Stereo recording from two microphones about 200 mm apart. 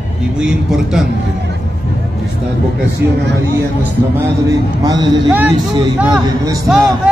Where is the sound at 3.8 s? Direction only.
15° right (ahead or behind).